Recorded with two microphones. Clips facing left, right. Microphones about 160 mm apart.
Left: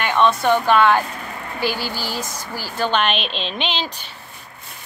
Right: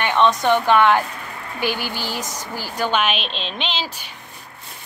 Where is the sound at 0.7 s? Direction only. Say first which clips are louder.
Even; 15° right (ahead or behind).